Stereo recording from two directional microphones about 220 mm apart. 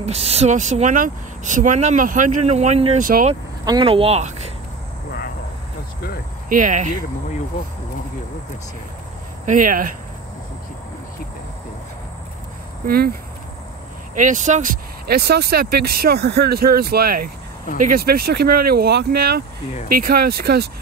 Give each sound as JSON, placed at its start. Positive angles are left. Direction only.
{"t": 0.0, "sound": "speech", "side_deg": -30}
{"t": 3.6, "sound": "speech", "side_deg": -20}
{"t": 6.5, "sound": "speech", "side_deg": -35}
{"t": 9.5, "sound": "speech", "side_deg": -40}
{"t": 12.8, "sound": "speech", "side_deg": -45}
{"t": 14.1, "sound": "speech", "side_deg": -35}